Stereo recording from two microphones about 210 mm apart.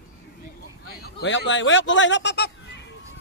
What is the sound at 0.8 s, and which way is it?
Speech, 55° left (ahead or behind).